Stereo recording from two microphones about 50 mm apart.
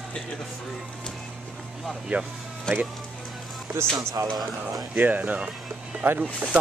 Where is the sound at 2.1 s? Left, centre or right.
Right.